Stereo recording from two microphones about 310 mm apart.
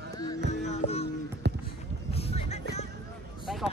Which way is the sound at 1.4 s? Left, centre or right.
Right.